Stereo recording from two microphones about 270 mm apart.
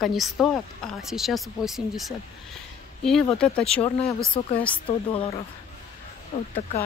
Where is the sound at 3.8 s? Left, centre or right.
Left.